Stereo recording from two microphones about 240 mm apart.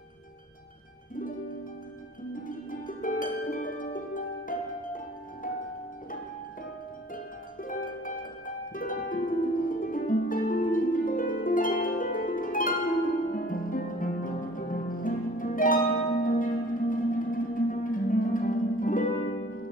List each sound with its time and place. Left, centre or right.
3.0 s harp: left
7.6 s music: left
8.7 s harp: left